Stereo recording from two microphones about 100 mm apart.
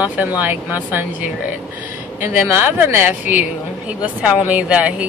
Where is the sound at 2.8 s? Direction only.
20° right (ahead or behind).